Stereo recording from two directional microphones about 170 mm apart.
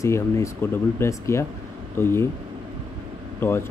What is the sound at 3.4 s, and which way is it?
Speech, 10° left (ahead or behind).